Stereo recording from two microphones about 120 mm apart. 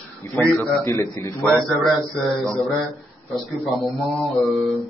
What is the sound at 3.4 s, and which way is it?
Mantra, centre (ahead or behind).